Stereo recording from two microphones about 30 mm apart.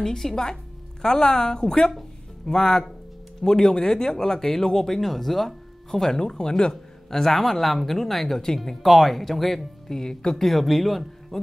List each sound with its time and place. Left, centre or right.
0.0 s speech: centre
1.0 s a woman's voice: left
1.7 s a woman's voice: centre
6.1 s a woman's voice: left; by 9.7 s centre
9.8 s a woman's voice: centre
10.3 s speech: centre